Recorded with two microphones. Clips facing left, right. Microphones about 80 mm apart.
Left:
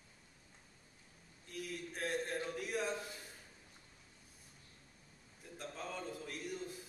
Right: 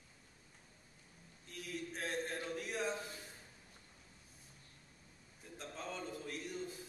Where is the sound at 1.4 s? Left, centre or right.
Centre.